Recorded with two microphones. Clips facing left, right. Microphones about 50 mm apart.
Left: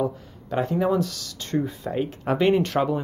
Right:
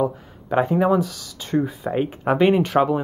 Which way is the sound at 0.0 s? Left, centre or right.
Centre.